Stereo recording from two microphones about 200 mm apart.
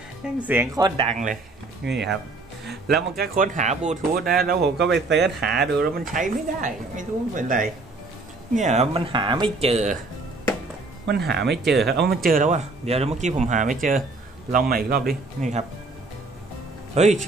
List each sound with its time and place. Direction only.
0.2 s speech: 10° right (ahead or behind)
1.0 s speech: 40° right (ahead or behind)
1.9 s speech: 60° right (ahead or behind); by 9.9 s 30° right (ahead or behind)
11.1 s speech: 55° right (ahead or behind)
11.6 s speech: centre (ahead or behind)
11.9 s speech: 50° right (ahead or behind)
16.9 s speech: 35° right (ahead or behind)